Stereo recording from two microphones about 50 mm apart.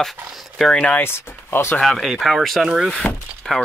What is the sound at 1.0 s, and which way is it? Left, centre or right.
Speech, left.